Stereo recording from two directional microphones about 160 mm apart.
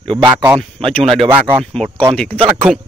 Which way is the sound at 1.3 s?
10° right (ahead or behind).